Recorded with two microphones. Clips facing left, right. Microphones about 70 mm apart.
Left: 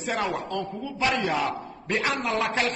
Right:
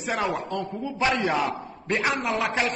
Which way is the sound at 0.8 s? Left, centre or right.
Right.